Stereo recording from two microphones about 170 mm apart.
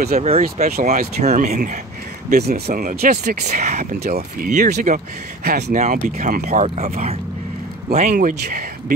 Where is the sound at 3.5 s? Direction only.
45° right (ahead or behind).